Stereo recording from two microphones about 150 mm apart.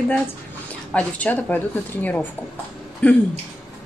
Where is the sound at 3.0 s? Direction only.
10° left (ahead or behind).